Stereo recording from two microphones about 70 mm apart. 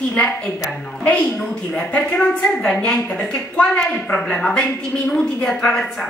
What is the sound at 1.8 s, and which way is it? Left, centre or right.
A woman's voice, centre.